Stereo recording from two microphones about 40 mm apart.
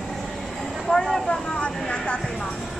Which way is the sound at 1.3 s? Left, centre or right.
Left.